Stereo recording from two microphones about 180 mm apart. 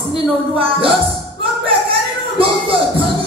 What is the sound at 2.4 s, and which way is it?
Music, 30° right (ahead or behind).